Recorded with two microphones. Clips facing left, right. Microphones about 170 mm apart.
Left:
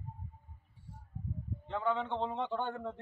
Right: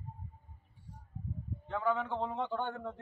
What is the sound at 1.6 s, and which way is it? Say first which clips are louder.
Speech: right 1 dB; 5° right (ahead or behind).